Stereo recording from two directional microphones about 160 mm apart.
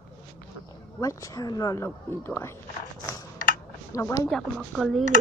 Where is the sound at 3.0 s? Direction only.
20° left (ahead or behind).